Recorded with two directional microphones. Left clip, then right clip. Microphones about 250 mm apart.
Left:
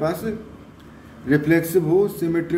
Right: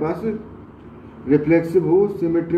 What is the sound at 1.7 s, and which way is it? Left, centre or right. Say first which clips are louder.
Speech: right 2 dB; left.